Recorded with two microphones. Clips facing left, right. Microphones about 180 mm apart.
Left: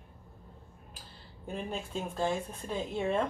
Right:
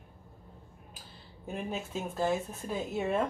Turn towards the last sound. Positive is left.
turn(degrees=-5)  # may be behind; listen again after turning